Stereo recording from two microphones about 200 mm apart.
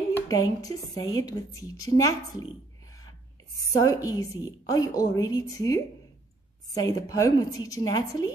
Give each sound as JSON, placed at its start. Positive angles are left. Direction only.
{"t": 0.1, "sound": "a woman's voice", "side_deg": 15}
{"t": 3.8, "sound": "a woman's voice", "side_deg": 15}